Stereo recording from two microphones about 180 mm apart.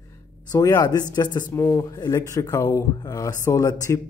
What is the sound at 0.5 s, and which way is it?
Speech, 20° left (ahead or behind).